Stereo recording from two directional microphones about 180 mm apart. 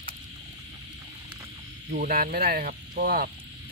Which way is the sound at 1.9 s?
55° right (ahead or behind).